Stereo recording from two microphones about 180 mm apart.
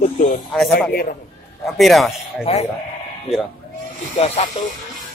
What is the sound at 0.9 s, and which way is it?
Speech, 55° left (ahead or behind).